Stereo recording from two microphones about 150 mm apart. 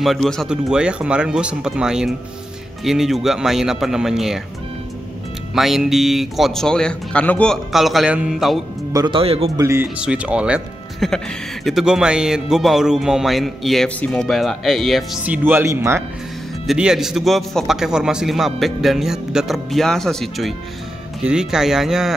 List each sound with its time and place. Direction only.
0.0 s a man's voice: centre (ahead or behind)
5.5 s a man's voice: centre (ahead or behind)
8.9 s speech: 30° right (ahead or behind)
9.6 s speech: 20° right (ahead or behind)
9.9 s a man's voice: 10° right (ahead or behind)
15.2 s speech: 10° right (ahead or behind)
16.6 s a man's voice: 5° right (ahead or behind)